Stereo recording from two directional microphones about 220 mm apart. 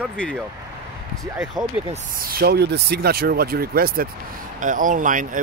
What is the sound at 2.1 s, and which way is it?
Speech, 40° right (ahead or behind).